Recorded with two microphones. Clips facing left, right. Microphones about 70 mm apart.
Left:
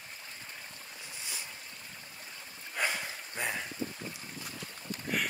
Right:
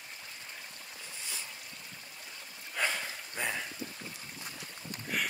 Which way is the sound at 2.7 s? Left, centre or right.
Centre.